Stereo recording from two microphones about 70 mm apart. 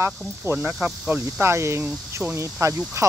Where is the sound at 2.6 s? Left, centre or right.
Right.